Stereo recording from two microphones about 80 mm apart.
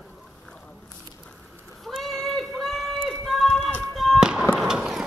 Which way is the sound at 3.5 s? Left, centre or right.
Centre.